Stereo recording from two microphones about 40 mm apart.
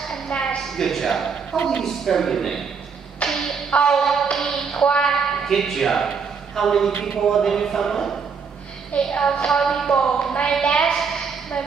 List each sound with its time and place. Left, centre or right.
0.3 s a sound: left
0.7 s speech: centre
3.3 s music: centre
3.9 s a man's voice: centre
9.1 s speech: left
9.5 s speech: centre
9.8 s speech: left
11.0 s a sound: centre